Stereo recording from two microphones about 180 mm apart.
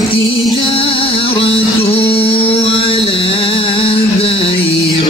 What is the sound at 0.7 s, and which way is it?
Music, 30° left (ahead or behind).